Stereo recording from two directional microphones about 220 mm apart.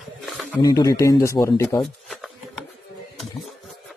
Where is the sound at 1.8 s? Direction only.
Centre (ahead or behind).